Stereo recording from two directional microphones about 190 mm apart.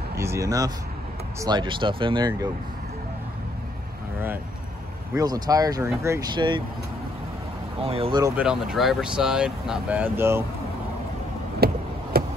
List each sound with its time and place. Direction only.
0.1 s a sound: 15° right (ahead or behind)
1.4 s speech: 25° right (ahead or behind)
5.1 s speech: 20° right (ahead or behind)
7.8 s speech: 30° right (ahead or behind)
8.2 s speech: 5° right (ahead or behind)
11.6 s a sound: 55° right (ahead or behind)